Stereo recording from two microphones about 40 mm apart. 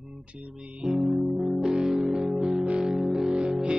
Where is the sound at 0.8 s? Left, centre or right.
Centre.